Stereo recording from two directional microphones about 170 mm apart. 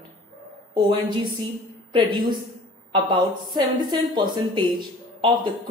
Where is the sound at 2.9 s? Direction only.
30° right (ahead or behind).